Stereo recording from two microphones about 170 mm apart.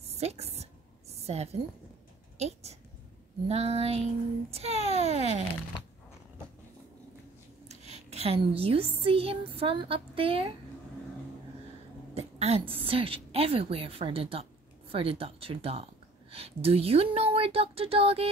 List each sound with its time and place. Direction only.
0.1 s a woman's voice: 40° right (ahead or behind)
7.6 s a sound: 40° right (ahead or behind)
9.0 s speech: 35° right (ahead or behind)
12.1 s a woman's voice: 35° right (ahead or behind)